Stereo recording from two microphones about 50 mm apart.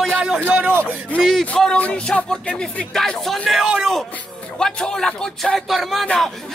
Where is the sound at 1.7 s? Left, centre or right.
Left.